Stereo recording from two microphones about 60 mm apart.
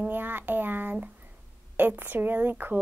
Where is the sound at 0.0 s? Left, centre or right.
Right.